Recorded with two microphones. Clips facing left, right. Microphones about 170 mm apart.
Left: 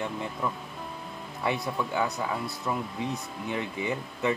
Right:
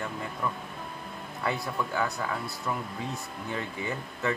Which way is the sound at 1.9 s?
15° left (ahead or behind).